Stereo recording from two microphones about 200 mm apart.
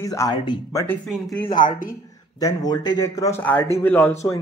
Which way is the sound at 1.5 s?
40° left (ahead or behind).